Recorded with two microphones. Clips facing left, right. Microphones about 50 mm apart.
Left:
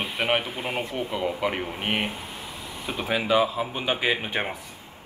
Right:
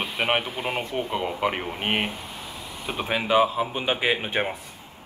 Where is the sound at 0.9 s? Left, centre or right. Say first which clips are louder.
Right 1 dB; right.